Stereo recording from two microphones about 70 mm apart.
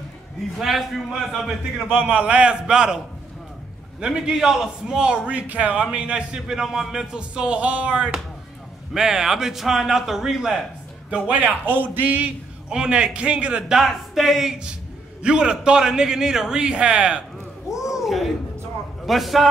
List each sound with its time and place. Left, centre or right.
0.6 s a man's voice: centre
2.0 s a man's voice: centre
4.0 s a man's voice: centre
11.1 s a man's voice: centre
12.6 s a man's voice: centre
17.8 s a sound: centre
19.0 s a man's voice: centre